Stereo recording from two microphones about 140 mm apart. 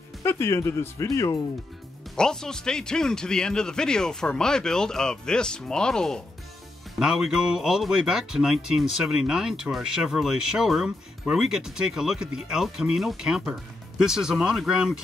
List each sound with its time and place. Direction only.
0.2 s speech: 20° left (ahead or behind)
2.1 s speech: 5° left (ahead or behind)